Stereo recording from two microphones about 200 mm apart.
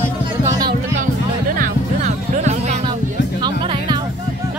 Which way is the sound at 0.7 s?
45° right (ahead or behind).